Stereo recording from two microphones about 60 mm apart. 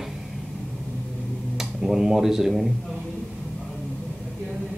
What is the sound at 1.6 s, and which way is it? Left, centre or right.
Speech, centre.